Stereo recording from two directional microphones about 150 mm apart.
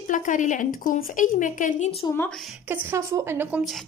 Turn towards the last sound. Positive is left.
turn(degrees=0)  # may be behind; listen again after turning